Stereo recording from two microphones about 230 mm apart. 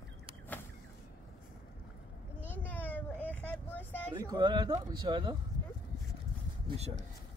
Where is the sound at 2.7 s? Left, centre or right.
Centre.